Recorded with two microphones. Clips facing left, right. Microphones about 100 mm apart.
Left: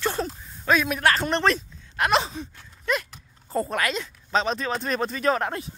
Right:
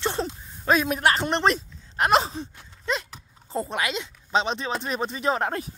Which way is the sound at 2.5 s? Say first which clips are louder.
Left 4 dB; 25° right (ahead or behind).